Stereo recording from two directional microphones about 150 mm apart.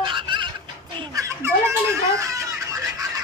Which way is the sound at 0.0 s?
35° right (ahead or behind).